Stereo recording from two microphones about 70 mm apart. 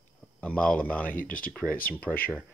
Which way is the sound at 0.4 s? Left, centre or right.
Centre.